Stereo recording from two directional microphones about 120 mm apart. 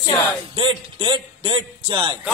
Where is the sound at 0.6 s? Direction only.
45° right (ahead or behind).